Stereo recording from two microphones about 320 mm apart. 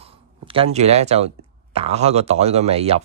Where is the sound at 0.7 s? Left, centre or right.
Centre.